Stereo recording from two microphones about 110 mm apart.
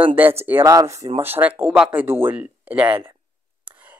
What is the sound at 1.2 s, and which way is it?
Speech, 20° right (ahead or behind).